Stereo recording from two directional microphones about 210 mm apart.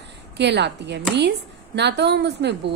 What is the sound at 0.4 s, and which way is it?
A woman's voice, 55° right (ahead or behind).